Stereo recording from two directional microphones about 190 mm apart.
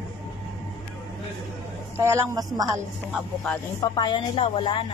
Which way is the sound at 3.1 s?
5° left (ahead or behind).